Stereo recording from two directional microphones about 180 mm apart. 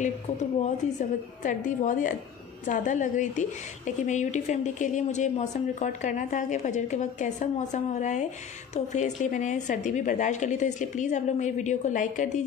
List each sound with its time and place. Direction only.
0.9 s a woman's voice: 45° left (ahead or behind)